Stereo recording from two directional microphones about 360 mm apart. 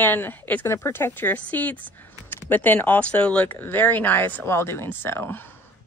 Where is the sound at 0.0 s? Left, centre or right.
Centre.